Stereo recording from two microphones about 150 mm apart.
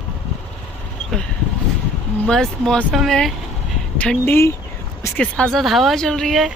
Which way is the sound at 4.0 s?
10° left (ahead or behind).